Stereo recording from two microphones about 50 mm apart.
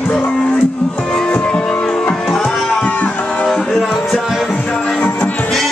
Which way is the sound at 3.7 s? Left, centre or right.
Centre.